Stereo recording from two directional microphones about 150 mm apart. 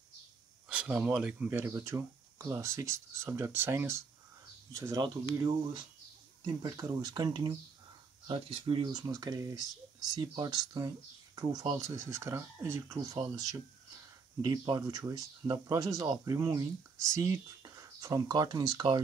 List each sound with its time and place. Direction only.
0.7 s speech: 10° right (ahead or behind)
14.4 s speech: 25° right (ahead or behind)